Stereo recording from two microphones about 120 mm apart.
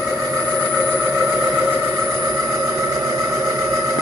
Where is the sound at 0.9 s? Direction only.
15° right (ahead or behind).